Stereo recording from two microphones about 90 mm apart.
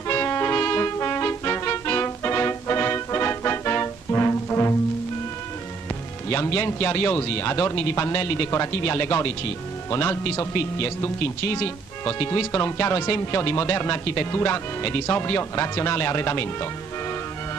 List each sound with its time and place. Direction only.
0.1 s music: 25° left (ahead or behind)
6.3 s a man's voice: 25° left (ahead or behind)